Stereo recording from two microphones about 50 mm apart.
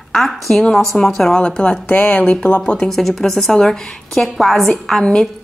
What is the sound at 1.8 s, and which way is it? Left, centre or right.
Speech, left.